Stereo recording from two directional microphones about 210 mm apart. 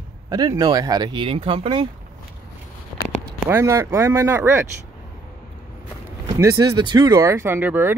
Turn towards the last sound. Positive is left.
turn(degrees=-10)  # may be behind; listen again after turning